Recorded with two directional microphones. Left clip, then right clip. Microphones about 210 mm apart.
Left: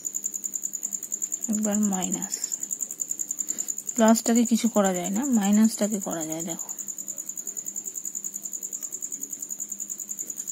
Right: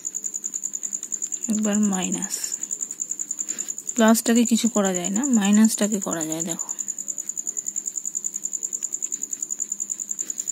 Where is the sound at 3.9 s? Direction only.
15° right (ahead or behind).